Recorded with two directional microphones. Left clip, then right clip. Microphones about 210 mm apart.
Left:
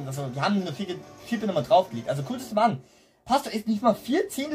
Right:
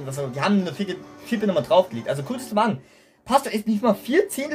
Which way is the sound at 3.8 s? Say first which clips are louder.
Right 3 dB; 25° right (ahead or behind).